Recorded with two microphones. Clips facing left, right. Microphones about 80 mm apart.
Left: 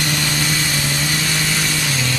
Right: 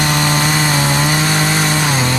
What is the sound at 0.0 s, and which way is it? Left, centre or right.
Chainsaw, right.